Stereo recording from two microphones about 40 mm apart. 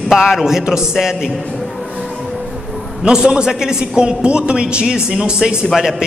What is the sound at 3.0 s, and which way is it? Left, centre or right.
A man's voice, centre.